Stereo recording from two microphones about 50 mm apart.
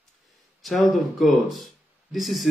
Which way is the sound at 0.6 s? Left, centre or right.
Centre.